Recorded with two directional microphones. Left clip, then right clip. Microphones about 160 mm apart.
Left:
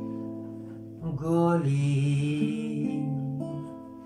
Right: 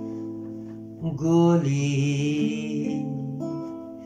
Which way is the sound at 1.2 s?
15° right (ahead or behind).